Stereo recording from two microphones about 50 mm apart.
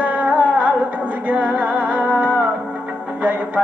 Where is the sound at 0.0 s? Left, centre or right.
Right.